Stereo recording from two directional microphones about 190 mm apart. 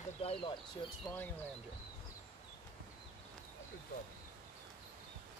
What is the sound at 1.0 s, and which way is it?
Speech, 10° left (ahead or behind).